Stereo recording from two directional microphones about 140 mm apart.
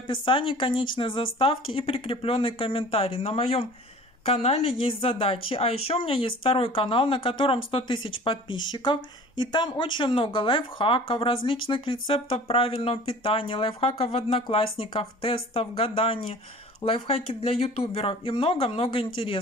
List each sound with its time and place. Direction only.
0.1 s a woman's voice: 35° left (ahead or behind)